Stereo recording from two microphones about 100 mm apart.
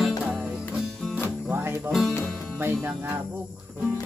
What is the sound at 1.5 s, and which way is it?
Music, 25° right (ahead or behind).